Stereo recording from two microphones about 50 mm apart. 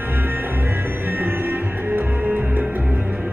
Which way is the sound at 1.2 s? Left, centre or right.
Right.